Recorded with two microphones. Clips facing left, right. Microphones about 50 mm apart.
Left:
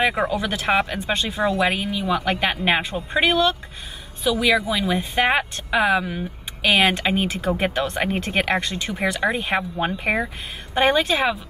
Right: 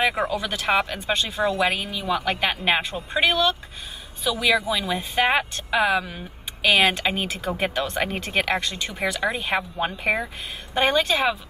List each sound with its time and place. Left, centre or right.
0.0 s speech: centre
6.6 s speech: centre